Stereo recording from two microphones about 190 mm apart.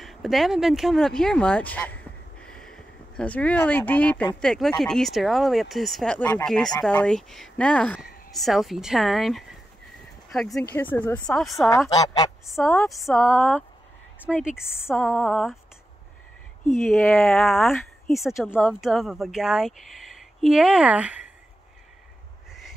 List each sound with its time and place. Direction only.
0.0 s speech: centre (ahead or behind)
11.9 s speech: 20° left (ahead or behind)
12.4 s speech: centre (ahead or behind)
14.5 s speech: 5° right (ahead or behind)
16.8 s speech: centre (ahead or behind)